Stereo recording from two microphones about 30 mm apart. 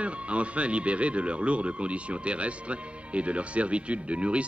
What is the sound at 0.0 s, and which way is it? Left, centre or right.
Speech, right.